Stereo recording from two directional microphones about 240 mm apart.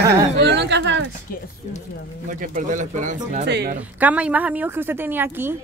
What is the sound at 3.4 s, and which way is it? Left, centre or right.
Speech, right.